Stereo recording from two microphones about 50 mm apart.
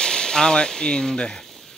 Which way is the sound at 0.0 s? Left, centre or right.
Centre.